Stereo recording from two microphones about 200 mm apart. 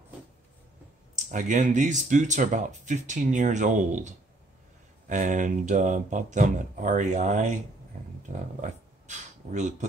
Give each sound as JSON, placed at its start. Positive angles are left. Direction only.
{"t": 1.1, "sound": "speech", "side_deg": -40}
{"t": 8.5, "sound": "speech", "side_deg": -35}